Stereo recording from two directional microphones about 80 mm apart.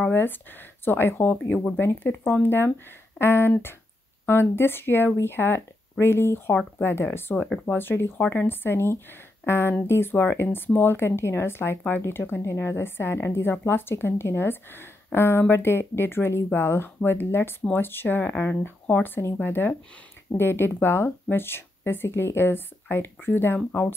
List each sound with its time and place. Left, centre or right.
0.1 s speech: left